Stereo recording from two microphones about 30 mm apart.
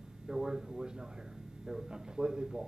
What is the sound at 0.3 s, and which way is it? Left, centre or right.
A man's voice, centre.